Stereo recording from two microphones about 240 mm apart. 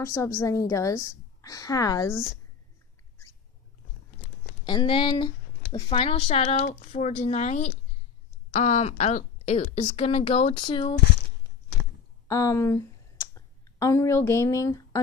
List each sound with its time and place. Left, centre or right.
0.0 s a woman's voice: centre
4.6 s speech: centre
12.3 s speech: centre